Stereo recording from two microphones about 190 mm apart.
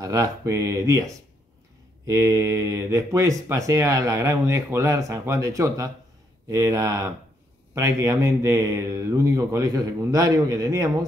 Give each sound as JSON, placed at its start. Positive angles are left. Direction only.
{"t": 0.0, "sound": "speech", "side_deg": -15}